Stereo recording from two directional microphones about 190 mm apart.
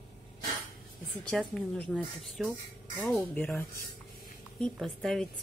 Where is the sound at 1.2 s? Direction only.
5° left (ahead or behind).